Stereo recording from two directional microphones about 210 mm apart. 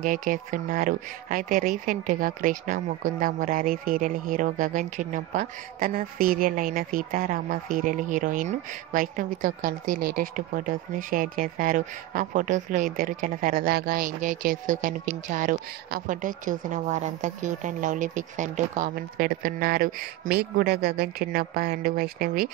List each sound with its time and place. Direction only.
0.0 s speech: 40° right (ahead or behind)